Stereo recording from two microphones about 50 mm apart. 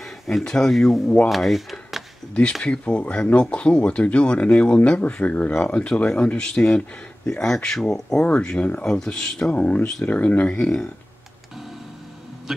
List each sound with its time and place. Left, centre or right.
0.5 s speech: centre
0.7 s speech: centre
1.3 s a sound: centre
2.6 s speech: left
8.2 s speech: left
9.5 s speech: left
10.6 s speech: centre
12.5 s speech: centre